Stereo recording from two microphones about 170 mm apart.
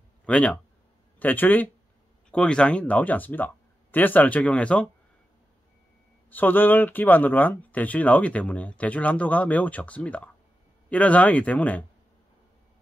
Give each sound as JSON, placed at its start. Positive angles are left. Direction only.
{"t": 0.2, "sound": "speech", "side_deg": 5}
{"t": 6.3, "sound": "speech", "side_deg": 10}